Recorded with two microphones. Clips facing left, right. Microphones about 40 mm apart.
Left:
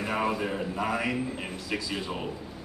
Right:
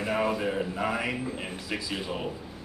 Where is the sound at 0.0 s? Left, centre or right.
Centre.